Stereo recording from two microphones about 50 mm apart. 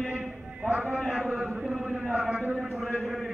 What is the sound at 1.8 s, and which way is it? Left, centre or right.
Speech, right.